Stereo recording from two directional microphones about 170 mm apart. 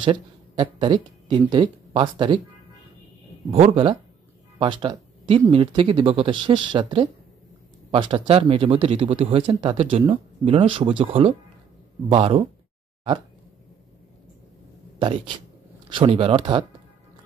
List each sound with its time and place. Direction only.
0.0 s speech: 30° right (ahead or behind)
3.5 s speech: 35° right (ahead or behind)
15.0 s speech: 30° right (ahead or behind)